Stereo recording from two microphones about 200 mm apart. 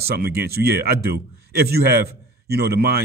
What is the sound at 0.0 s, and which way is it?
Speech, 50° right (ahead or behind).